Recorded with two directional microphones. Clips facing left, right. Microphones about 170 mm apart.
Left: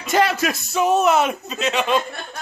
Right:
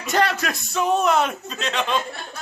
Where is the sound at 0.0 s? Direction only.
5° left (ahead or behind).